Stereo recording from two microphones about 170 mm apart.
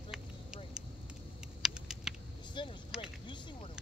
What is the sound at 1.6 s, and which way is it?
Typing, 5° right (ahead or behind).